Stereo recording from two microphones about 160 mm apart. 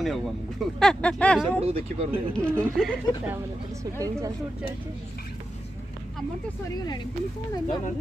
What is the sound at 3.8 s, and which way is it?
Speech, 20° right (ahead or behind).